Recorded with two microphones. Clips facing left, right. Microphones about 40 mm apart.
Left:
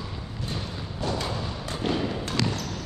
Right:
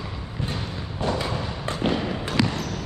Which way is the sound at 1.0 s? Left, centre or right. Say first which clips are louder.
Right 3 dB; right.